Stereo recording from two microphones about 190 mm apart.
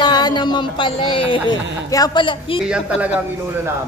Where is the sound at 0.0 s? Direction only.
25° left (ahead or behind).